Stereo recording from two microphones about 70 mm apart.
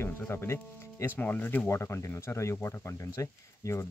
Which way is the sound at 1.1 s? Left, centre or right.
Left.